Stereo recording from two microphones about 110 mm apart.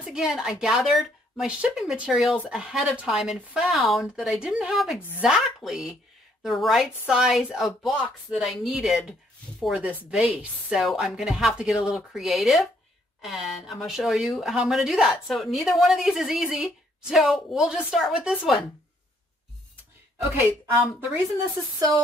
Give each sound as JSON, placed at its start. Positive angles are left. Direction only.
{"t": 0.0, "sound": "speech", "side_deg": -5}
{"t": 20.3, "sound": "speech", "side_deg": -20}
{"t": 21.7, "sound": "speech", "side_deg": -35}